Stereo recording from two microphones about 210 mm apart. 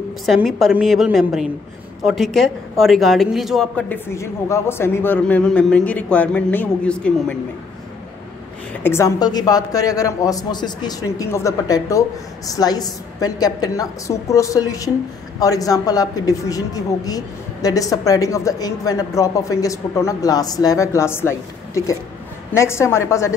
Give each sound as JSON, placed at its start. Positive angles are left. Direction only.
{"t": 0.3, "sound": "speech", "side_deg": 0}
{"t": 8.8, "sound": "a woman's voice", "side_deg": 15}